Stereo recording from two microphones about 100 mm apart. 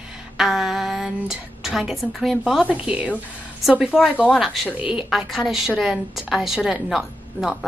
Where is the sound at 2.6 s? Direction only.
10° right (ahead or behind).